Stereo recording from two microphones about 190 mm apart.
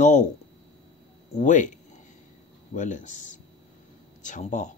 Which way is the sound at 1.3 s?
40° left (ahead or behind).